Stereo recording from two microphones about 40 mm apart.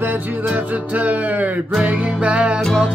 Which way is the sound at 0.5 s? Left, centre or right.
Right.